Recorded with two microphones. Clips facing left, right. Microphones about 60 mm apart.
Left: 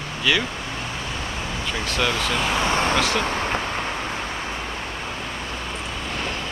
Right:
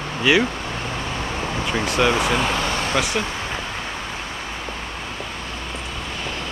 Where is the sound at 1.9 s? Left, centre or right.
Centre.